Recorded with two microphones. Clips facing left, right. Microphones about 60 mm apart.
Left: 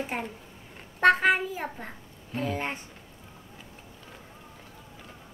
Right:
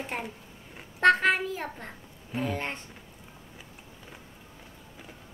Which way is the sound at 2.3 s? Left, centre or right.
Centre.